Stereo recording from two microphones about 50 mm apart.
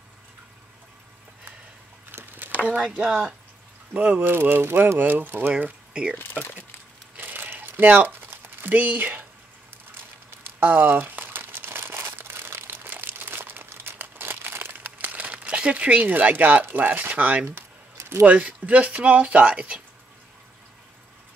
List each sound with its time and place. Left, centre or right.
2.3 s a sound: right
3.0 s speech: centre
3.9 s speech: right
4.2 s speech: right
5.5 s speech: right
6.1 s speech: left
7.2 s crumpling: right
8.6 s speech: right
10.6 s crumpling: right
16.6 s speech: right